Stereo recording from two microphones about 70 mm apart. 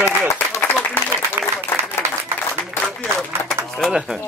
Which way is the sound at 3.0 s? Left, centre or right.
Centre.